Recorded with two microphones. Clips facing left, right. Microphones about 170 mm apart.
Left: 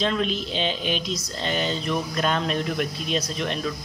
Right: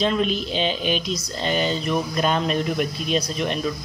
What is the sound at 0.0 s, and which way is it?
Speech, 5° right (ahead or behind).